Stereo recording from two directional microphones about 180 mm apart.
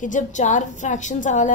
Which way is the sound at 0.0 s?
45° left (ahead or behind).